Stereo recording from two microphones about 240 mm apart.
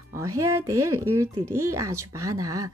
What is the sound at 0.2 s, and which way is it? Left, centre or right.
A woman's voice, centre.